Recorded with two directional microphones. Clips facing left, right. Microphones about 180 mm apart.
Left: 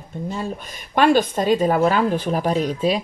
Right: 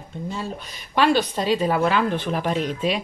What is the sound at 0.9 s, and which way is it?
A woman's voice, 50° left (ahead or behind).